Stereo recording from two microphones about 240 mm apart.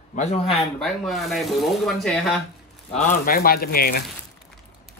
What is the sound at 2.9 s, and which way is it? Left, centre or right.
Speech, left.